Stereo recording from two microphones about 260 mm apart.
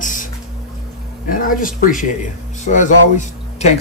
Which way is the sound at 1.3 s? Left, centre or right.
Left.